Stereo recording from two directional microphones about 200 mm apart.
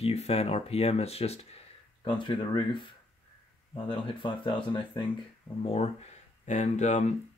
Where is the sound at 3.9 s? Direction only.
25° left (ahead or behind).